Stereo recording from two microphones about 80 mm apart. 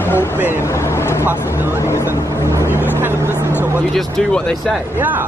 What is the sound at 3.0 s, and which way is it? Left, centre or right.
Vehicle, right.